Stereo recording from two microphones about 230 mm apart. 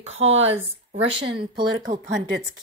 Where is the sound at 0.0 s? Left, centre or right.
Right.